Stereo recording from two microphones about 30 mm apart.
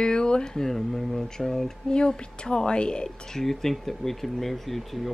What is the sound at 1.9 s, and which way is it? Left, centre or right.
A woman's voice, left.